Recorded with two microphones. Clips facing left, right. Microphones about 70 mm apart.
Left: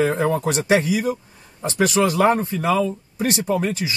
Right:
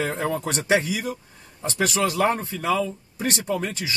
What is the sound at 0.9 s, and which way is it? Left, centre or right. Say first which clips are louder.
Speech: left 7 dB; left.